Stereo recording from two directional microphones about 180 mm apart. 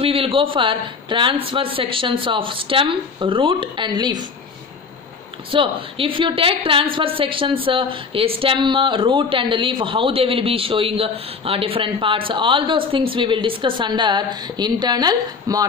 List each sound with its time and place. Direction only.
0.0 s a woman's voice: 30° right (ahead or behind)
5.5 s a woman's voice: 30° right (ahead or behind)